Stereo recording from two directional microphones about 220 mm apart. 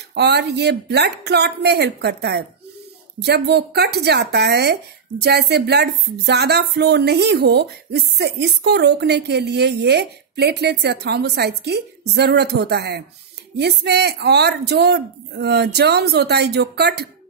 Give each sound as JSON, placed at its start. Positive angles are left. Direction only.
{"t": 0.1, "sound": "speech", "side_deg": -50}